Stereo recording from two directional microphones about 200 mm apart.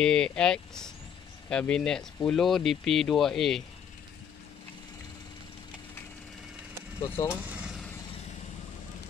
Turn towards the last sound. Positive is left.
turn(degrees=-5)  # may be behind; listen again after turning